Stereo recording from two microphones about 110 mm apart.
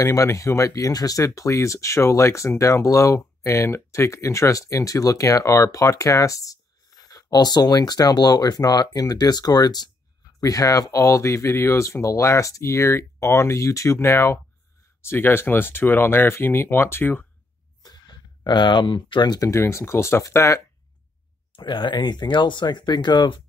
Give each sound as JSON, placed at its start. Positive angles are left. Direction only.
{"t": 0.0, "sound": "speech", "side_deg": 25}
{"t": 17.8, "sound": "speech", "side_deg": 40}
{"t": 19.5, "sound": "speech", "side_deg": 25}
{"t": 21.5, "sound": "speech", "side_deg": 45}